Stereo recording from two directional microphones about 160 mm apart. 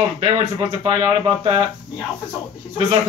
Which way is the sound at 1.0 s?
25° right (ahead or behind).